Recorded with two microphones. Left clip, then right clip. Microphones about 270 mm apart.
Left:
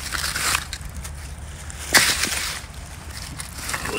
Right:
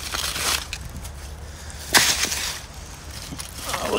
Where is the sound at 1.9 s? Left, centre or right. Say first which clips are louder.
Left 1 dB; right.